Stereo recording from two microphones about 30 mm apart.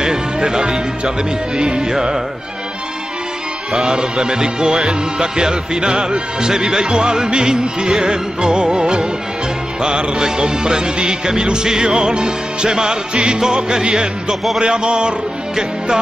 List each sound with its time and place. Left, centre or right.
0.0 s speech: right
1.6 s music: right
3.8 s music: right